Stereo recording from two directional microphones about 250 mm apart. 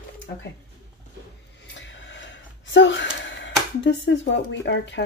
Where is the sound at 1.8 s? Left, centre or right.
Left.